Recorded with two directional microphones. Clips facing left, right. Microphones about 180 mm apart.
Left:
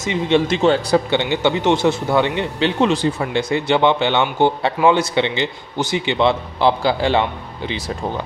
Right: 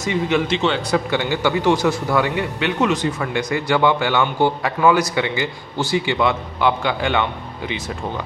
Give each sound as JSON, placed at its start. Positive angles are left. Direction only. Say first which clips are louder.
{"t": 0.0, "sound": "speech", "louder": "left 2 dB", "side_deg": 20}
{"t": 0.5, "sound": "a man's voice", "louder": "left 4 dB", "side_deg": 45}
{"t": 1.3, "sound": "speech", "louder": "even", "side_deg": 25}